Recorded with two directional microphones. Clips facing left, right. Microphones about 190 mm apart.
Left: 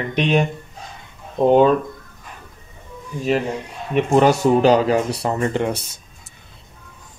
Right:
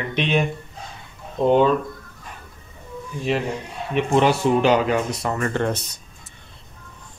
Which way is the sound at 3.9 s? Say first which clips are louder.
Left 3 dB; 45° left (ahead or behind).